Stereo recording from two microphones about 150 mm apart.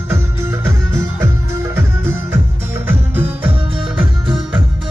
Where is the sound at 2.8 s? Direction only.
15° right (ahead or behind).